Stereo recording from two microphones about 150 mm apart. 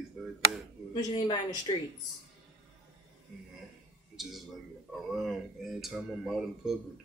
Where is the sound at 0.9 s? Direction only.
30° left (ahead or behind).